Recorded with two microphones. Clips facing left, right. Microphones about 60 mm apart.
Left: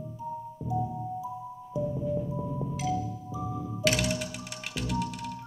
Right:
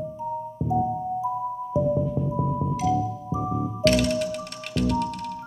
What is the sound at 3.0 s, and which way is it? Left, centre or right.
Music, right.